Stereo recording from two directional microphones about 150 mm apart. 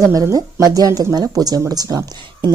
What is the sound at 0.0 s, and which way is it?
Speech, 20° right (ahead or behind).